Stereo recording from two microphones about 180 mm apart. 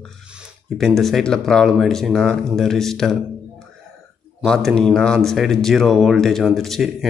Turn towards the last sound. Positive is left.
turn(degrees=0)  # may be behind; listen again after turning